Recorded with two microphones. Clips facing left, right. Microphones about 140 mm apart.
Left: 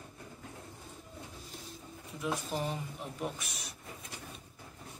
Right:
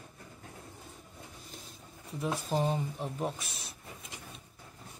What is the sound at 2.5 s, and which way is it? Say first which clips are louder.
A man's voice: right 5 dB; 30° right (ahead or behind).